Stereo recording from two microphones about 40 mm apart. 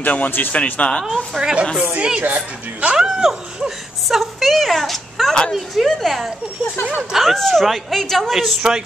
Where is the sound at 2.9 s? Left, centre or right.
Centre.